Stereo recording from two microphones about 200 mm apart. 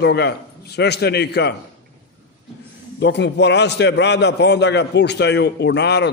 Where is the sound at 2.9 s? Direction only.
60° left (ahead or behind).